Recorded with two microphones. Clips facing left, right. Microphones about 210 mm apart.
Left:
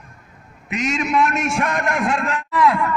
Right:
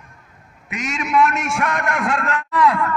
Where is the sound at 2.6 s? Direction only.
15° left (ahead or behind).